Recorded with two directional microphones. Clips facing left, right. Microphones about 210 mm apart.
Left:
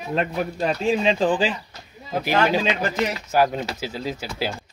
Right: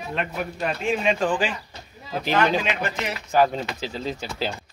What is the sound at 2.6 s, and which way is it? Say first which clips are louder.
Speech: left 3 dB; 35° left (ahead or behind).